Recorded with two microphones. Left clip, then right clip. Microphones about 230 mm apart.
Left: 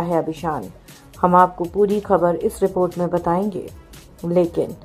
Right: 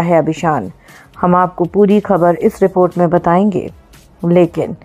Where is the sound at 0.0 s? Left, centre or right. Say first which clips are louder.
Right 9 dB; right.